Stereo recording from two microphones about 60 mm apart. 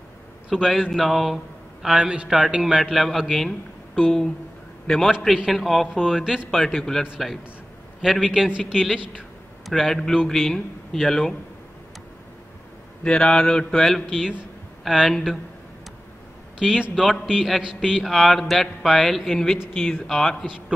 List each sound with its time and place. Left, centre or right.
0.5 s a man's voice: centre
6.5 s a man's voice: centre
8.0 s a man's voice: centre
9.7 s a man's voice: centre
13.0 s a man's voice: centre
16.6 s a man's voice: centre
17.9 s a man's voice: centre
19.7 s a man's voice: centre